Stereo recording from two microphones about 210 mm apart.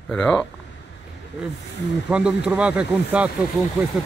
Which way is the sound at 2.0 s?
5° right (ahead or behind).